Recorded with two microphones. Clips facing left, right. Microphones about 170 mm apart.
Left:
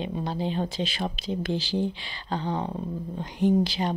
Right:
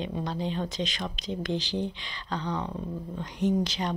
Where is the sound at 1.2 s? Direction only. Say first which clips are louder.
Even; 20° right (ahead or behind).